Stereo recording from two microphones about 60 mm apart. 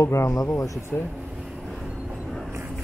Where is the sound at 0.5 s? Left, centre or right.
Left.